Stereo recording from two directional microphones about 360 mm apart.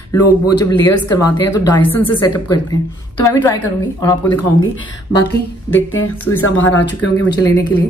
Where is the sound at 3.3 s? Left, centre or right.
Centre.